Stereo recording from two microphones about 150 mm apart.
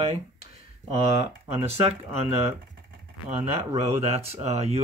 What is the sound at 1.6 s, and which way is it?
Speech, 45° right (ahead or behind).